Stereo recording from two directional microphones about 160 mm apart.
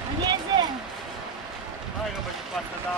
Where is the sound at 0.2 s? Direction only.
25° right (ahead or behind).